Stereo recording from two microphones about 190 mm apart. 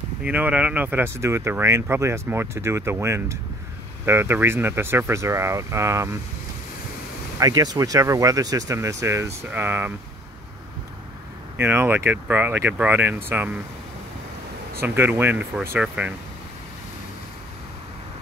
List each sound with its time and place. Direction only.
0.2 s speech: 5° right (ahead or behind)
7.3 s speech: 20° right (ahead or behind)
11.5 s speech: 10° right (ahead or behind)
14.8 s speech: 10° right (ahead or behind)